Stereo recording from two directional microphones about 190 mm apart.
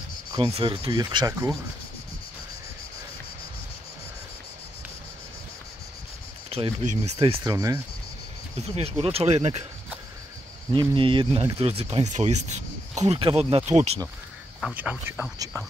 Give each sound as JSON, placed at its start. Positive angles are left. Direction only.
{"t": 0.3, "sound": "speech", "side_deg": -30}
{"t": 6.5, "sound": "speech", "side_deg": -35}
{"t": 7.2, "sound": "speech", "side_deg": -25}
{"t": 7.5, "sound": "speech", "side_deg": -15}
{"t": 8.5, "sound": "speech", "side_deg": -35}
{"t": 10.7, "sound": "speech", "side_deg": -25}
{"t": 14.6, "sound": "speech", "side_deg": -10}
{"t": 15.3, "sound": "speech", "side_deg": -20}